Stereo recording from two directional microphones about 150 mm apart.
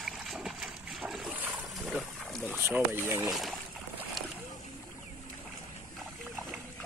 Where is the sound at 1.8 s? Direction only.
Centre (ahead or behind).